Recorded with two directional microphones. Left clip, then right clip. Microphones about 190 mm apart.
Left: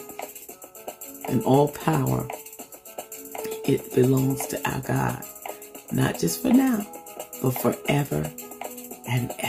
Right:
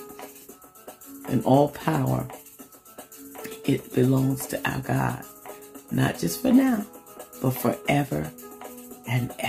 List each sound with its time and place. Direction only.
1.3 s speech: 15° left (ahead or behind)
3.4 s speech: 15° left (ahead or behind)
8.6 s music: 15° left (ahead or behind)